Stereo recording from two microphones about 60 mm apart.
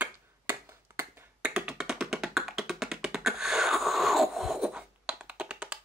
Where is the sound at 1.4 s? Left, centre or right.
Centre.